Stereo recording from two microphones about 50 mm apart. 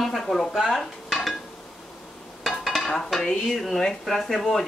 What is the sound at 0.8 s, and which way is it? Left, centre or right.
Dishes, centre.